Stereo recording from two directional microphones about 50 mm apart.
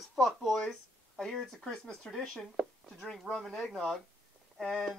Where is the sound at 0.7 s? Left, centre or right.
Centre.